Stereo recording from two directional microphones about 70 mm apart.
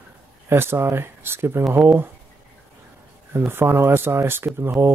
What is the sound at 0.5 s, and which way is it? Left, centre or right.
Speech, right.